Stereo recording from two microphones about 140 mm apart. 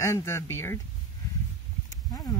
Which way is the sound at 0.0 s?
20° left (ahead or behind).